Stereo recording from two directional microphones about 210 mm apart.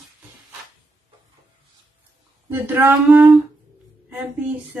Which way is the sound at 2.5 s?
10° right (ahead or behind).